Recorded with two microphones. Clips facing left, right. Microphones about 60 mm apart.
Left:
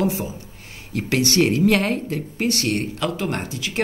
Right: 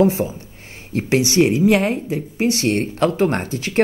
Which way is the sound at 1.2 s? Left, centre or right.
Centre.